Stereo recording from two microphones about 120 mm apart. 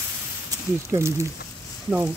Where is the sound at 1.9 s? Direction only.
10° right (ahead or behind).